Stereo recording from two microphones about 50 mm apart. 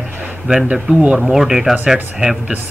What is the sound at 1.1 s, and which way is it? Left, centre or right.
Speech, centre.